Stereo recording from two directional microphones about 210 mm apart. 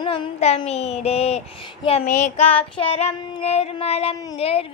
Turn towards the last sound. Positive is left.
turn(degrees=30)  # may be behind; listen again after turning